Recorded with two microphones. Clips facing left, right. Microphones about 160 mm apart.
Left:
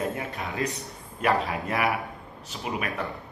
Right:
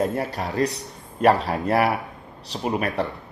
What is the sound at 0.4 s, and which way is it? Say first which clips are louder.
Speech: right 6 dB; 40° right (ahead or behind).